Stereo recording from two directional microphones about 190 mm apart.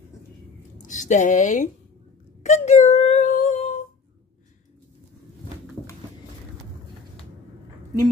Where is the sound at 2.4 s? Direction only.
35° left (ahead or behind).